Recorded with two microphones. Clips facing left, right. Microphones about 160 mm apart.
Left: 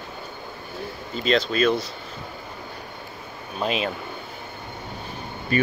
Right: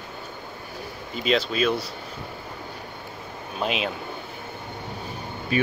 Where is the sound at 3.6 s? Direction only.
5° right (ahead or behind).